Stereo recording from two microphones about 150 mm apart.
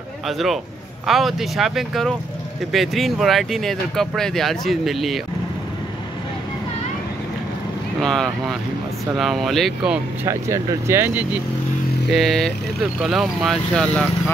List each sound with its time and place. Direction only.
1.0 s speech: centre (ahead or behind)
8.0 s speech: 5° left (ahead or behind)
10.2 s speech: 20° right (ahead or behind)
12.1 s speech: centre (ahead or behind)